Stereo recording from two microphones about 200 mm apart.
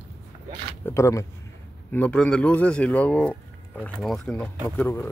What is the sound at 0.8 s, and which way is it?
Speech, 15° left (ahead or behind).